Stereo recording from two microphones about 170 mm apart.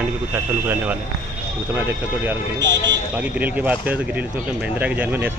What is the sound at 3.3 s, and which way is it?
Speech, 10° right (ahead or behind).